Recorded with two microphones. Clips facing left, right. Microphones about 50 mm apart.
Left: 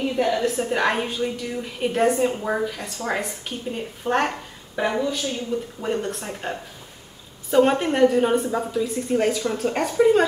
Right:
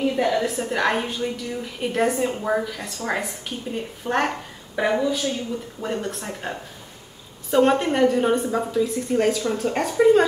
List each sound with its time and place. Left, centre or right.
0.2 s a woman's voice: centre
4.7 s a woman's voice: centre